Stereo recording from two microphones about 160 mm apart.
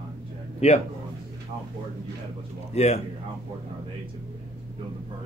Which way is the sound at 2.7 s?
40° left (ahead or behind).